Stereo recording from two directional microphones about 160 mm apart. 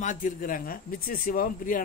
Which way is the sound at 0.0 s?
55° left (ahead or behind).